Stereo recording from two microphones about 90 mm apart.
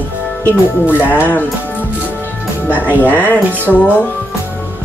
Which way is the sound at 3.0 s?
20° left (ahead or behind).